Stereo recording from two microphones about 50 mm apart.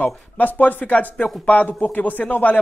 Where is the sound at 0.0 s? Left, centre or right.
Left.